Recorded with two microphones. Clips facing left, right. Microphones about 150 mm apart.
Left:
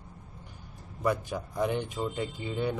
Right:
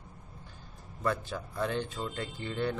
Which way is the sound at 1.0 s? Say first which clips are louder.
Left 3 dB; 15° left (ahead or behind).